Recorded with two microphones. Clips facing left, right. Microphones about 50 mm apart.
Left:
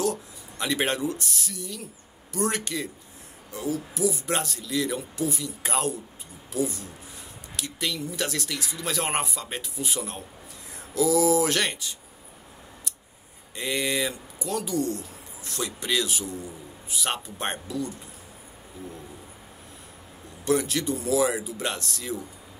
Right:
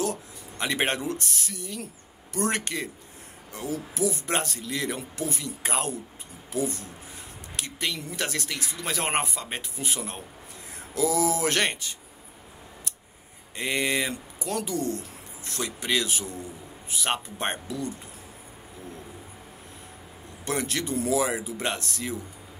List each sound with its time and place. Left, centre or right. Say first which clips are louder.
0.0 s a sound: left 2 dB; right
1.0 s speech: left 2 dB; right
2.3 s speech: even; right
13.6 s speech: right 1 dB; right
20.4 s speech: left 4 dB; right